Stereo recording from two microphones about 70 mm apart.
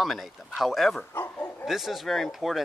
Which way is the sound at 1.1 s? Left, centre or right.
Left.